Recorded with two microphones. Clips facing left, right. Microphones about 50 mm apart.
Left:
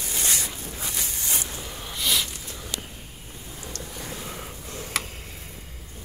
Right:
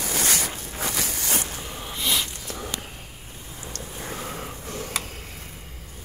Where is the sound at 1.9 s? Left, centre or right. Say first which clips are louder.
Even; right.